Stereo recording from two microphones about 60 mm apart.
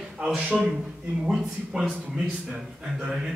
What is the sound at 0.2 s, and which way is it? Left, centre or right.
A man's voice, centre.